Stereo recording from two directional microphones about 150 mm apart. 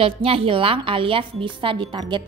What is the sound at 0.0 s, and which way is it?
A woman's voice, 40° right (ahead or behind).